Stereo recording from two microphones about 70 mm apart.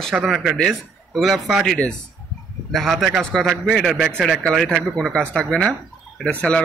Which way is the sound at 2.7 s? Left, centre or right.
Centre.